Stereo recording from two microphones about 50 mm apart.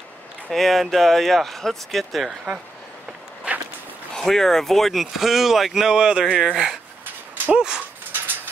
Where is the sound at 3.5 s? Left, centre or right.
Right.